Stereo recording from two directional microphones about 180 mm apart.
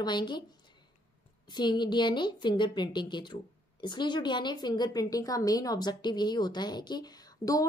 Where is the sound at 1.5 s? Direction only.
25° left (ahead or behind).